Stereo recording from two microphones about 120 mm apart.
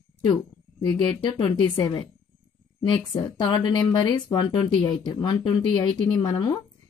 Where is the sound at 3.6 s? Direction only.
35° left (ahead or behind).